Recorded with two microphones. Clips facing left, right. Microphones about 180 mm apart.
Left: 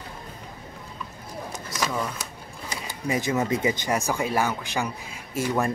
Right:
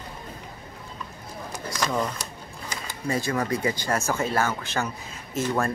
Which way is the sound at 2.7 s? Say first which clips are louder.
Left 1 dB; 20° left (ahead or behind).